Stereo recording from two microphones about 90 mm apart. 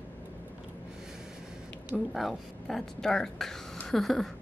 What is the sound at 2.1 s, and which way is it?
A woman's voice, centre (ahead or behind).